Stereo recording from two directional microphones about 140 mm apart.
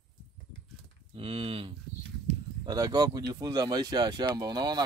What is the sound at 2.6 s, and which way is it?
Speech, 30° right (ahead or behind).